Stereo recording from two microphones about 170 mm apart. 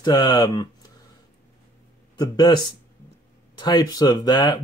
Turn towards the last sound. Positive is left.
turn(degrees=25)  # may be behind; listen again after turning